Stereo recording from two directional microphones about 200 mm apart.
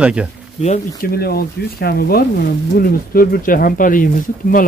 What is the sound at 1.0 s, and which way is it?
Speech, 50° left (ahead or behind).